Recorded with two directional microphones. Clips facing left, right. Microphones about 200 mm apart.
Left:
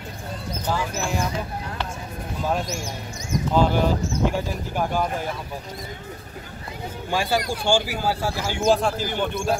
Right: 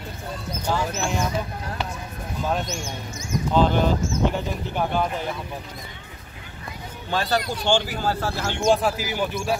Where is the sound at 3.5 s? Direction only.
10° left (ahead or behind).